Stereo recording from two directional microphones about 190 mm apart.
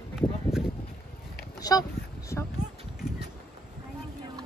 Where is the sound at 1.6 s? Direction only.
20° left (ahead or behind).